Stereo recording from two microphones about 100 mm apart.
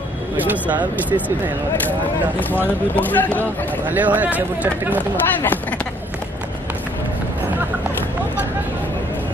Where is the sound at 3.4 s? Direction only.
20° right (ahead or behind).